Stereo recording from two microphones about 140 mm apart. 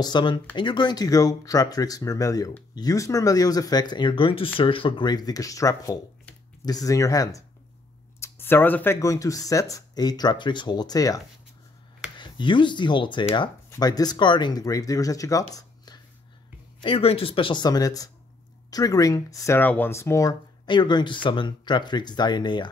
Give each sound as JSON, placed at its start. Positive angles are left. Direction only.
{"t": 0.0, "sound": "speech", "side_deg": 35}
{"t": 15.5, "sound": "a sound", "side_deg": 30}
{"t": 16.8, "sound": "speech", "side_deg": 40}